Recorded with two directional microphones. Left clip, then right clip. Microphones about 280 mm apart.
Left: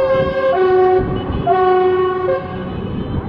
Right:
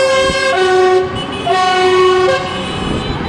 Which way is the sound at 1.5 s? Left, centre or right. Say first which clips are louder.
Right 2 dB; right.